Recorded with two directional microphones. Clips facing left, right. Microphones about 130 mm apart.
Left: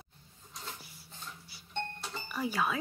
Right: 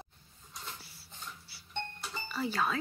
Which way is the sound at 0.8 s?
20° left (ahead or behind).